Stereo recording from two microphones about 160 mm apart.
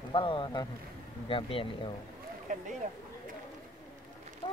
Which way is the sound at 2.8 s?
50° right (ahead or behind).